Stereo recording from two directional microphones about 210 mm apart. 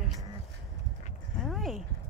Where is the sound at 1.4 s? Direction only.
Centre (ahead or behind).